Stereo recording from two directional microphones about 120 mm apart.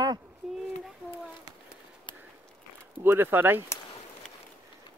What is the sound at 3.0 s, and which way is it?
Speech, 20° right (ahead or behind).